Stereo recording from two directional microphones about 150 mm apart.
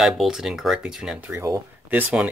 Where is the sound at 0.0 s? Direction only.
5° right (ahead or behind).